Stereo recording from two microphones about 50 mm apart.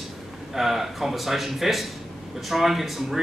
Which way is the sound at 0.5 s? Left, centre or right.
Centre.